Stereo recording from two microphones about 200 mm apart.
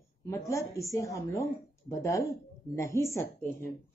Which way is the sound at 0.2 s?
15° left (ahead or behind).